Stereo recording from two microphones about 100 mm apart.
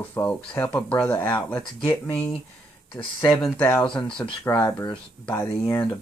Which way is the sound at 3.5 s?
15° left (ahead or behind).